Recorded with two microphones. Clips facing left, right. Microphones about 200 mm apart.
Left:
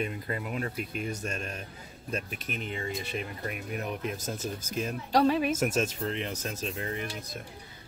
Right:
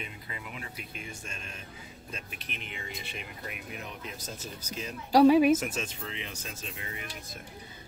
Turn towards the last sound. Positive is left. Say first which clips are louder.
# left 8 dB
turn(degrees=40)  # may be behind; listen again after turning